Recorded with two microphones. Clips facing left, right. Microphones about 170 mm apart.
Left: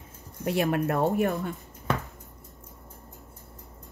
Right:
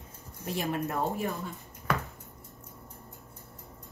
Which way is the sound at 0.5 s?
65° left (ahead or behind).